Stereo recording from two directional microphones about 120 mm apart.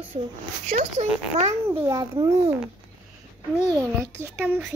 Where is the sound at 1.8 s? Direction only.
30° right (ahead or behind).